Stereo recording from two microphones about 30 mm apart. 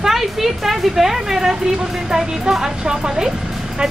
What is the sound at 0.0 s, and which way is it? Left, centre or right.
Speech, centre.